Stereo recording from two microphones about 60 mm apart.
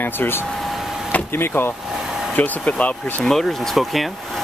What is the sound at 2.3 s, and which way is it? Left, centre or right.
Speech, left.